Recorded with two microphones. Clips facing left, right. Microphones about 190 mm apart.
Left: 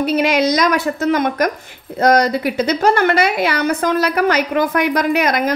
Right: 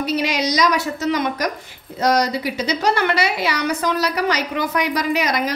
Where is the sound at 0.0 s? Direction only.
55° left (ahead or behind).